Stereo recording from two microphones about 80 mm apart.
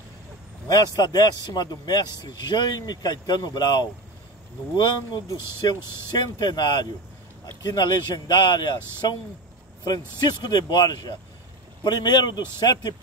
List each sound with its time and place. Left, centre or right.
0.7 s a man's voice: left